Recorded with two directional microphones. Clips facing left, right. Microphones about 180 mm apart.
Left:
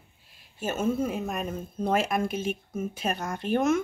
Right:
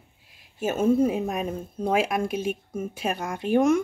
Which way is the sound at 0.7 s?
35° right (ahead or behind).